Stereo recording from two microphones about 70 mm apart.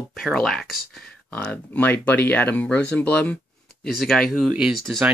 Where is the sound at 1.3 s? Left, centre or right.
Left.